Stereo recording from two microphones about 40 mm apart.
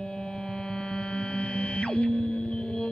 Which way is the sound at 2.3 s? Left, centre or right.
Left.